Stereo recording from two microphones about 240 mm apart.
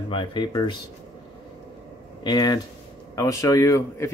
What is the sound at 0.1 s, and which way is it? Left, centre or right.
Speech, centre.